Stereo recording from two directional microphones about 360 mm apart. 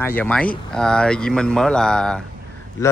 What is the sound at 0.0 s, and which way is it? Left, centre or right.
Speech, centre.